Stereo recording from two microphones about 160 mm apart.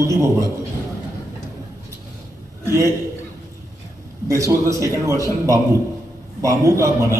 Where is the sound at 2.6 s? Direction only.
15° right (ahead or behind).